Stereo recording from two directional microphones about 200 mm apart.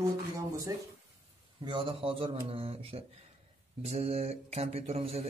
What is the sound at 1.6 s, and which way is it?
A man's voice, 25° right (ahead or behind).